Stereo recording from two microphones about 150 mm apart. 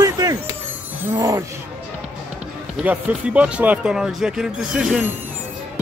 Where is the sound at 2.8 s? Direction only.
10° right (ahead or behind).